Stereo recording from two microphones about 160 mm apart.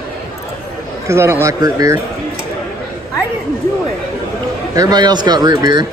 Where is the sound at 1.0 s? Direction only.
15° right (ahead or behind).